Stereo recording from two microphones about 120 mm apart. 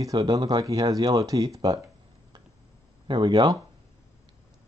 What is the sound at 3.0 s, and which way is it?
Speech, 40° right (ahead or behind).